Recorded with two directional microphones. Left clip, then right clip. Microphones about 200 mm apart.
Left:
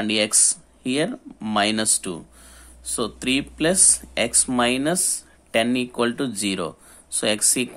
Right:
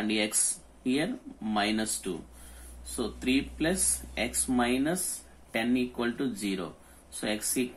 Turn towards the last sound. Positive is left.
turn(degrees=55)  # may be behind; listen again after turning